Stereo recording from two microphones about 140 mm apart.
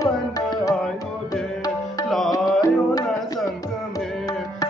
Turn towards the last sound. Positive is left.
turn(degrees=25)  # may be behind; listen again after turning